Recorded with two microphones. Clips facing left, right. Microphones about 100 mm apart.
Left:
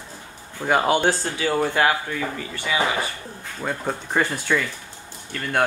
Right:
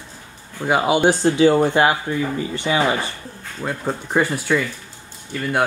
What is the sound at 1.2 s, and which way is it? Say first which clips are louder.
Speech: right 8 dB; 20° right (ahead or behind).